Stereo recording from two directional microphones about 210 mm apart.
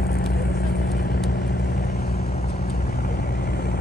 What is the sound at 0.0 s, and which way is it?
Vehicle, 45° left (ahead or behind).